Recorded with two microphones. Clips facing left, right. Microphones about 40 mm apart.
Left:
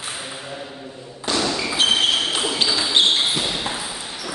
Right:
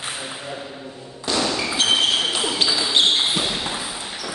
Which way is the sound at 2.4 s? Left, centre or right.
Centre.